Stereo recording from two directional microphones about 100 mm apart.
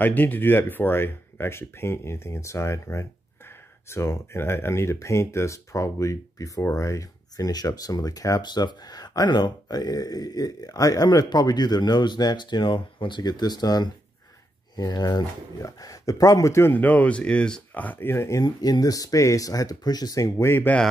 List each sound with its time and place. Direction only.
0.0 s speech: 15° left (ahead or behind)